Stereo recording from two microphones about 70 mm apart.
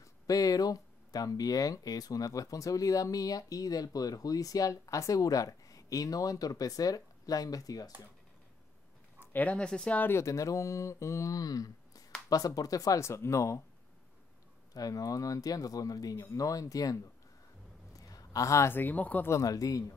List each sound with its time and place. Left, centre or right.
0.0 s speech: left
9.2 s speech: left
10.1 s speech: left
13.0 s speech: left
14.7 s speech: left
17.9 s a sound: left
18.7 s speech: left
19.4 s speech: left